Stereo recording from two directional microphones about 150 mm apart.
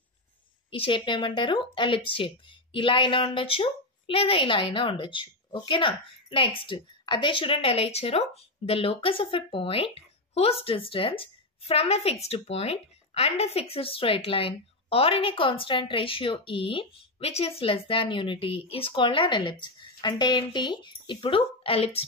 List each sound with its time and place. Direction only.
0.7 s speech: 35° left (ahead or behind)